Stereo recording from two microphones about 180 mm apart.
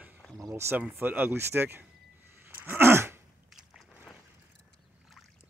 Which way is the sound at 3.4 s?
Centre (ahead or behind).